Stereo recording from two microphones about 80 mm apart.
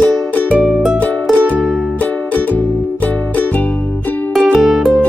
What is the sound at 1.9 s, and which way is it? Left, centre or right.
Music, centre.